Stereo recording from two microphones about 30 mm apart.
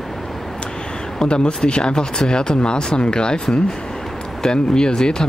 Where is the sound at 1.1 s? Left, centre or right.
Left.